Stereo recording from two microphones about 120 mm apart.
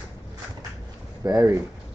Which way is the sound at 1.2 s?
25° right (ahead or behind).